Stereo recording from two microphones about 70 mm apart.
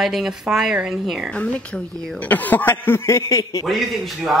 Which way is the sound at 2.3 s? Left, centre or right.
Left.